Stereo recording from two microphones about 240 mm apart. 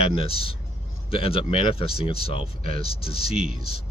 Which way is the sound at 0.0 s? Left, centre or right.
Left.